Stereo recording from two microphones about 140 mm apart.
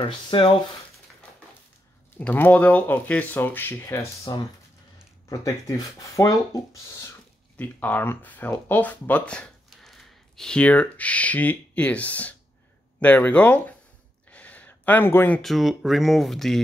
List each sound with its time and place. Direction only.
0.0 s speech: 35° left (ahead or behind)
2.1 s speech: 15° left (ahead or behind)
5.4 s speech: 25° left (ahead or behind)
14.3 s a sound: 10° left (ahead or behind)
15.4 s speech: centre (ahead or behind)